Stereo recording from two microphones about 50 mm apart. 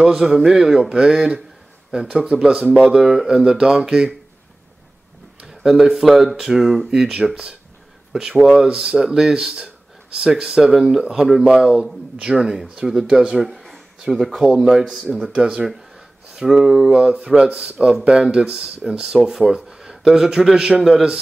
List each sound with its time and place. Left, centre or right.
0.0 s speech: centre
5.5 s speech: centre
13.5 s a sound: centre
14.0 s speech: centre
15.3 s speech: centre